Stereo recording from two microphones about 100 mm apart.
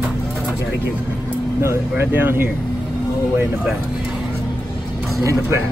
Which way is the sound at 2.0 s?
25° right (ahead or behind).